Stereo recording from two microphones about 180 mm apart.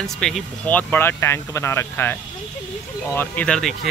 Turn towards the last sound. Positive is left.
turn(degrees=5)  # may be behind; listen again after turning